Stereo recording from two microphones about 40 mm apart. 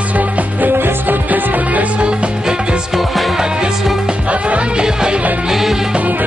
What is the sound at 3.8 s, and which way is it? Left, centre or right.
Music, centre.